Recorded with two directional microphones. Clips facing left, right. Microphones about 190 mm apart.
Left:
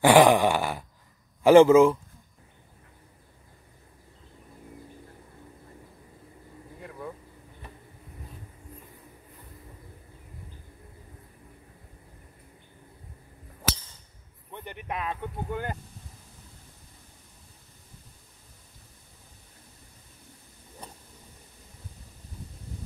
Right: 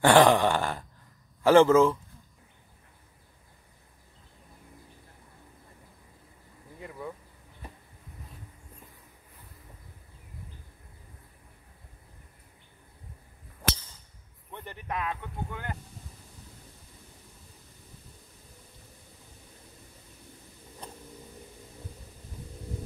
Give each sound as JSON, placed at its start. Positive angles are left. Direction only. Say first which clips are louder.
{"t": 0.0, "sound": "groan", "louder": "left 2 dB", "side_deg": 10}
{"t": 1.4, "sound": "speech", "louder": "left 4 dB", "side_deg": 15}
{"t": 6.8, "sound": "vehicle", "louder": "even", "side_deg": 0}
{"t": 14.5, "sound": "a sound", "louder": "left 1 dB", "side_deg": 15}
{"t": 15.0, "sound": "a sound", "louder": "left 1 dB", "side_deg": 35}
{"t": 20.8, "sound": "vehicle", "louder": "right 2 dB", "side_deg": 5}